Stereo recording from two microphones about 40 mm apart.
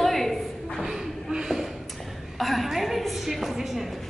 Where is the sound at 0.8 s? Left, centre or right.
Centre.